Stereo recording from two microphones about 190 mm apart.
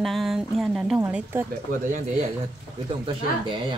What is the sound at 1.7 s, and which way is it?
Speech, 45° right (ahead or behind).